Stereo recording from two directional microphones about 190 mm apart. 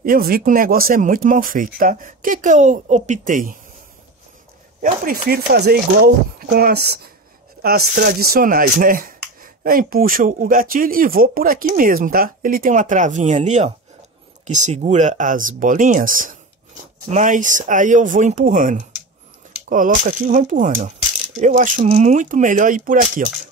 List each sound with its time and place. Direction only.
0.0 s speech: 50° right (ahead or behind)
5.0 s speech: 50° right (ahead or behind)